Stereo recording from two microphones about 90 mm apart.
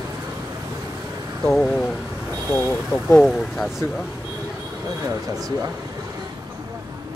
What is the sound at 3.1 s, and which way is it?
Speech, 5° left (ahead or behind).